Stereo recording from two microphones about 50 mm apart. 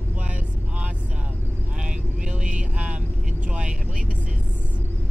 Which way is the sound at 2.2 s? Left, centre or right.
Right.